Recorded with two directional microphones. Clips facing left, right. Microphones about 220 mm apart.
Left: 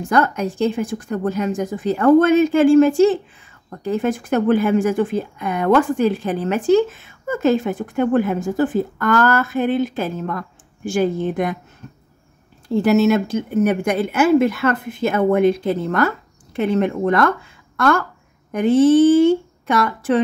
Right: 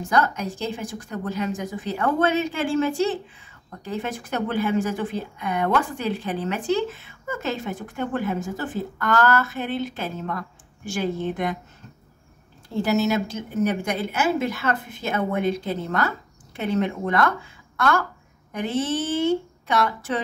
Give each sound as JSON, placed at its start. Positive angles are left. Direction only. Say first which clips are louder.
{"t": 0.1, "sound": "speech", "louder": "left 5 dB", "side_deg": 55}
{"t": 12.8, "sound": "speech", "louder": "left 7 dB", "side_deg": 55}
{"t": 16.5, "sound": "speech", "louder": "left 6 dB", "side_deg": 50}
{"t": 18.5, "sound": "speech", "louder": "left 12 dB", "side_deg": 50}